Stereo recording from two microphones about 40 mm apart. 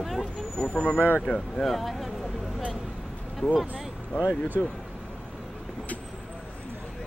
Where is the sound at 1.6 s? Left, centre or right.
Centre.